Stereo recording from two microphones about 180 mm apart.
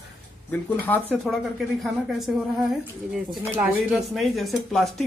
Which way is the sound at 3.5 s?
5° right (ahead or behind).